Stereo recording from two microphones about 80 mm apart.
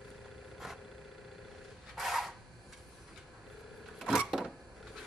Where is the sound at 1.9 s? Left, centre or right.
Centre.